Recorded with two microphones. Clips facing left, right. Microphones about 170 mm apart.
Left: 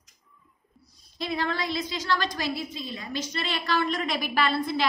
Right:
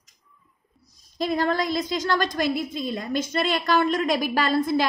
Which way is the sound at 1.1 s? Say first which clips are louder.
Right 6 dB; 45° right (ahead or behind).